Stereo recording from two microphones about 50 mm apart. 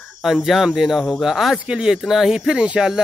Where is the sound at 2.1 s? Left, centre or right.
Centre.